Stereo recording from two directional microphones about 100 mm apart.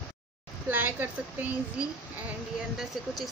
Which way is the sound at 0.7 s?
20° right (ahead or behind).